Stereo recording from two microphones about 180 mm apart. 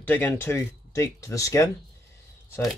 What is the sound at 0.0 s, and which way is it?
Speech, 10° left (ahead or behind).